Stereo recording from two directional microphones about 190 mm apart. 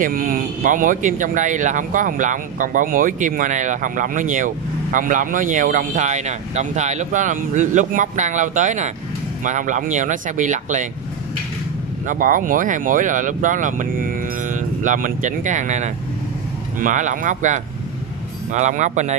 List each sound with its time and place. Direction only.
0.0 s speech: 50° right (ahead or behind)
12.1 s speech: 45° right (ahead or behind)